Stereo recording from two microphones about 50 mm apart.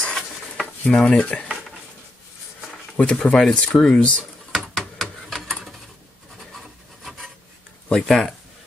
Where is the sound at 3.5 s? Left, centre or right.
Left.